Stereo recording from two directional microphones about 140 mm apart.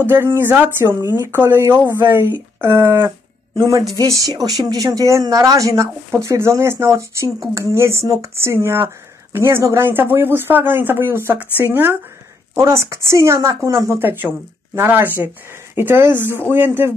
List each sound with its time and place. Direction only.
0.0 s speech: 15° right (ahead or behind)